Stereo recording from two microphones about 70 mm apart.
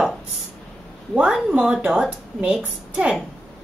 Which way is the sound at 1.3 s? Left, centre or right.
Centre.